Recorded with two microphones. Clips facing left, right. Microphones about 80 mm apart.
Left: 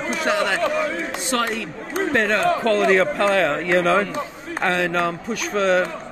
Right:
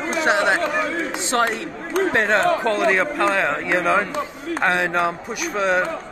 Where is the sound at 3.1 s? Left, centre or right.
Centre.